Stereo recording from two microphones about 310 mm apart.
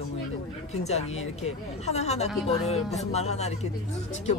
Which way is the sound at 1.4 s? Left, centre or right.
Left.